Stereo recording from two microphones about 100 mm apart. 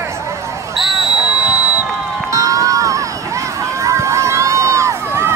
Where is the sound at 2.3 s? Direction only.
35° right (ahead or behind).